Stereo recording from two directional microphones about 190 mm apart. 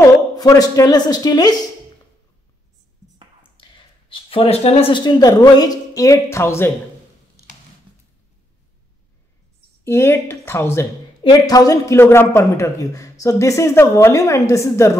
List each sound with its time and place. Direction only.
0.4 s speech: 20° left (ahead or behind)
3.6 s a sound: 25° left (ahead or behind)
4.1 s speech: 30° left (ahead or behind); by 6.7 s 15° left (ahead or behind)
9.8 s speech: 15° left (ahead or behind)